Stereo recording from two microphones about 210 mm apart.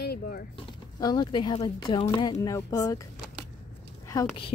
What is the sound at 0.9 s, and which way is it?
Speech, 20° left (ahead or behind).